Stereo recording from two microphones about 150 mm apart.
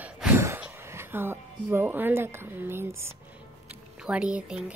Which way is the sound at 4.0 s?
5° right (ahead or behind).